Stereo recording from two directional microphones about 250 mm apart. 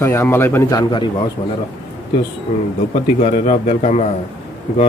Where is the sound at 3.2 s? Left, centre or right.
Left.